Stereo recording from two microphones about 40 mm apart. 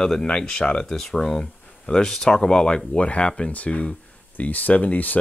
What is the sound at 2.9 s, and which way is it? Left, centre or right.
Speech, left.